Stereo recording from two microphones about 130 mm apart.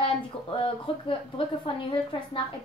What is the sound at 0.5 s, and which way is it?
A woman's voice, 45° left (ahead or behind).